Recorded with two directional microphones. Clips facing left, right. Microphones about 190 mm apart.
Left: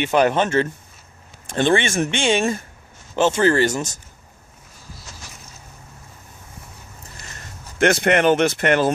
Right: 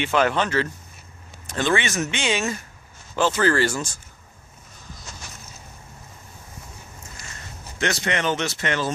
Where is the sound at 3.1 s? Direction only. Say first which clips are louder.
Left 4 dB; 20° left (ahead or behind).